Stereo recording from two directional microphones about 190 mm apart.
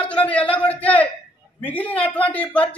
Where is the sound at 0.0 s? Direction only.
5° left (ahead or behind).